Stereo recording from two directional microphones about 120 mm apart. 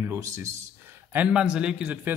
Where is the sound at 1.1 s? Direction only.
10° right (ahead or behind).